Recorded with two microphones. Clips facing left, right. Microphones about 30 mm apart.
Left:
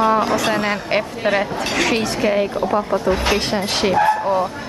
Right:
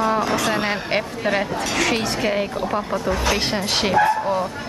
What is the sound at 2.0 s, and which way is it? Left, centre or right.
Speech, centre.